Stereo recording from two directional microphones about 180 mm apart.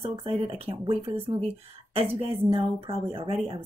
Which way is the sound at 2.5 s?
30° right (ahead or behind).